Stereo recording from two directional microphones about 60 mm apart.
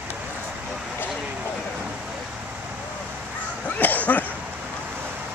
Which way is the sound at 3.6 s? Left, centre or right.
Left.